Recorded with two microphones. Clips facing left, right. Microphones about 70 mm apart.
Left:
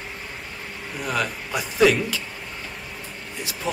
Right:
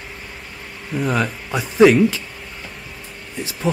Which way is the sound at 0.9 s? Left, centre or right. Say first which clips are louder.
Right 6 dB; right.